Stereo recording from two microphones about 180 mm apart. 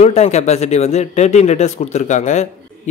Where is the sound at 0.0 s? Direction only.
35° left (ahead or behind).